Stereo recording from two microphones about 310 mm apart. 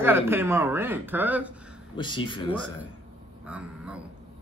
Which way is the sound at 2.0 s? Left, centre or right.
Centre.